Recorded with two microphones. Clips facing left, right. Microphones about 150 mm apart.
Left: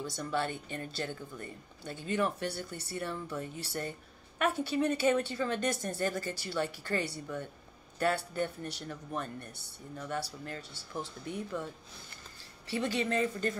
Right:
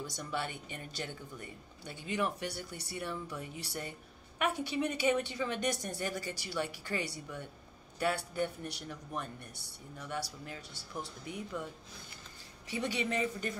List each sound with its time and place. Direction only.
0.0 s speech: 15° right (ahead or behind)
12.6 s speech: 15° right (ahead or behind)